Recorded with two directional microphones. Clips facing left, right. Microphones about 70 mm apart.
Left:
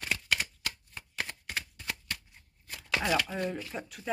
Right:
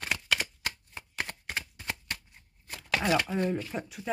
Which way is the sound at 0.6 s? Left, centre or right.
Right.